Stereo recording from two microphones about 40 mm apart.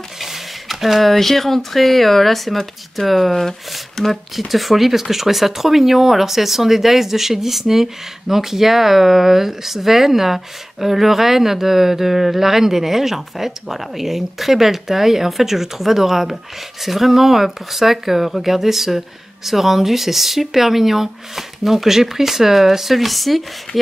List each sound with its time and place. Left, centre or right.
0.2 s speech: centre
23.7 s speech: left